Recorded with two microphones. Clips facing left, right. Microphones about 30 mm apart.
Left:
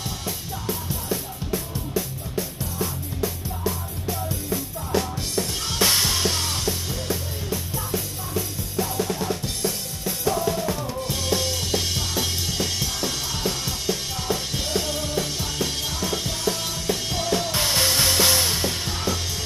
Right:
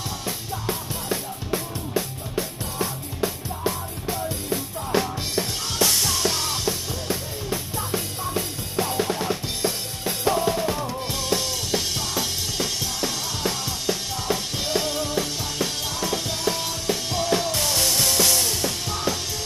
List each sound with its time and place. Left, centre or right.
0.7 s music: right
5.8 s music: left
6.2 s music: centre
7.1 s music: centre
8.4 s drum kit: right
10.0 s drum kit: right
10.4 s drum kit: right
11.1 s music: centre
14.9 s drum kit: centre
16.4 s music: centre
17.5 s music: left